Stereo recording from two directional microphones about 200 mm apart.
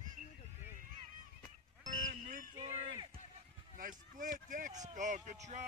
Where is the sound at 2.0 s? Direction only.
40° right (ahead or behind).